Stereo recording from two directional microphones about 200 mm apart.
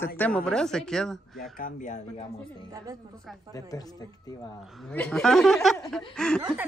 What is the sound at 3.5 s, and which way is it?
Speech, 20° left (ahead or behind).